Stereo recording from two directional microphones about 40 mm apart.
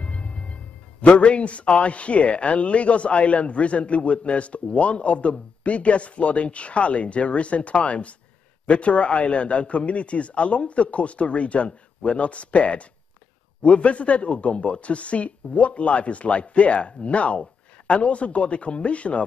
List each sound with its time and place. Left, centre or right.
0.0 s music: left
1.0 s a man's voice: left